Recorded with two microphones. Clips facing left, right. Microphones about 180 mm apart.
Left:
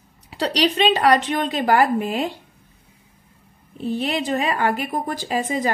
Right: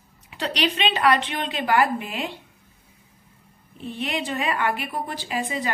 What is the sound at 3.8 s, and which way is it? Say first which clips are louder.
A woman's voice: left 5 dB; 35° left (ahead or behind).